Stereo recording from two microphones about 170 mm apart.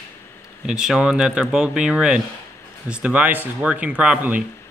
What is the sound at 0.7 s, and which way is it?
Speech, 5° right (ahead or behind).